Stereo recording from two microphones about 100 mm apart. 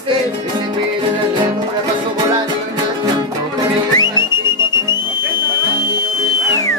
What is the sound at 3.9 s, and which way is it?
Music, 45° left (ahead or behind).